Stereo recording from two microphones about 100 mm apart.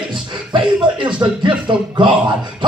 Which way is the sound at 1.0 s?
50° right (ahead or behind).